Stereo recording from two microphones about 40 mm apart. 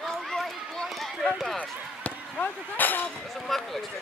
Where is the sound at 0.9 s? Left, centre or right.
Centre.